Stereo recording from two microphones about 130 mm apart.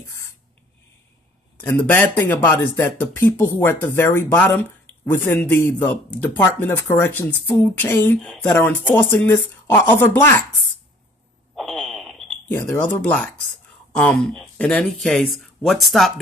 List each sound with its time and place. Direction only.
1.6 s speech: 15° left (ahead or behind)
11.5 s fart: centre (ahead or behind)
12.4 s speech: 15° left (ahead or behind)